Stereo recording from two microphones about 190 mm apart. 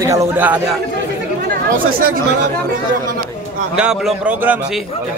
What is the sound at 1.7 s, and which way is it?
Speech, 50° right (ahead or behind).